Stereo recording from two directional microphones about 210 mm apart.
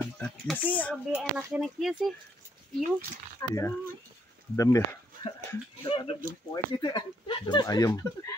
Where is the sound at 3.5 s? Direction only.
15° left (ahead or behind).